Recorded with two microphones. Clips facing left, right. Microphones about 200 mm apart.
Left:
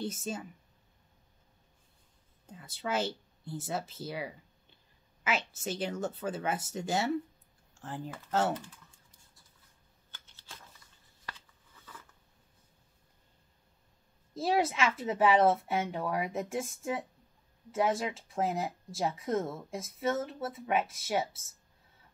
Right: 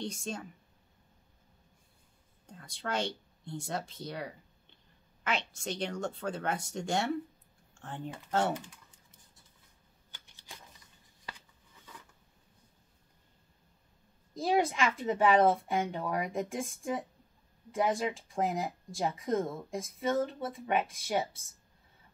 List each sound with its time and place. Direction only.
0.0 s speech: 5° left (ahead or behind)
2.4 s speech: 5° left (ahead or behind)
8.5 s typing: 20° right (ahead or behind)
10.1 s a sound: 15° right (ahead or behind)
14.3 s speech: 5° left (ahead or behind)